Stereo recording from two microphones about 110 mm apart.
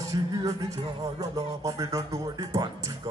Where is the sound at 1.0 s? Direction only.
30° right (ahead or behind).